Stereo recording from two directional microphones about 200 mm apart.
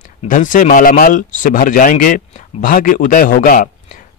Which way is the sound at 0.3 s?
40° left (ahead or behind).